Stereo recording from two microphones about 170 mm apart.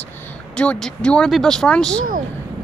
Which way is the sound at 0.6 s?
5° left (ahead or behind).